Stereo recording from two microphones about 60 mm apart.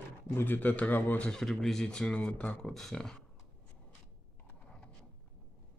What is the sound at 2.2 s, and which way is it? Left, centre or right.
Speech, left.